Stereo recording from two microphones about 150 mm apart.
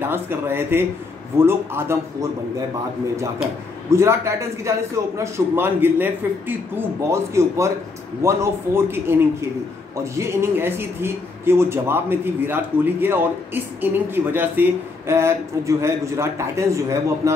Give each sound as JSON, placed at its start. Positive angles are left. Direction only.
{"t": 0.0, "sound": "speech", "side_deg": -15}
{"t": 3.9, "sound": "a man's voice", "side_deg": -20}